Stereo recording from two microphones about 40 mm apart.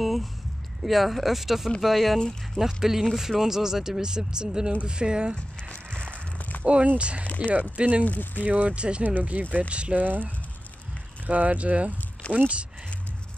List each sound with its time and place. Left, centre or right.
0.0 s a sound: centre
0.8 s speech: centre
2.6 s speech: centre
6.6 s speech: right
7.3 s speech: right
8.7 s speech: right
9.4 s speech: right
10.0 s speech: right
11.2 s speech: right